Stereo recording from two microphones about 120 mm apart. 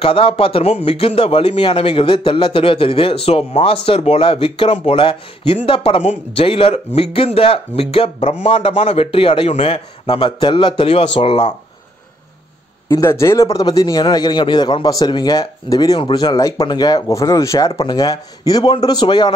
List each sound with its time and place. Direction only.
0.0 s a man's voice: 50° left (ahead or behind); by 8.5 s 65° left (ahead or behind)
8.5 s a man's voice: 55° left (ahead or behind)
12.9 s a man's voice: 20° left (ahead or behind)
13.6 s a man's voice: 35° left (ahead or behind)